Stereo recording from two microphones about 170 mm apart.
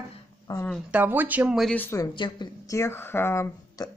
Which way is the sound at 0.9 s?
10° right (ahead or behind).